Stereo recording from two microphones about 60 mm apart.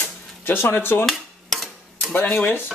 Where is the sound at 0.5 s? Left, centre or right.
Left.